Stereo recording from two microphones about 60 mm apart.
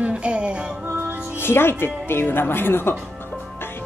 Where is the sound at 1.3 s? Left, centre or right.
Left.